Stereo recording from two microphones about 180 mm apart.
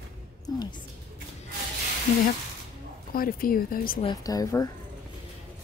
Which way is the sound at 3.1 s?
55° left (ahead or behind).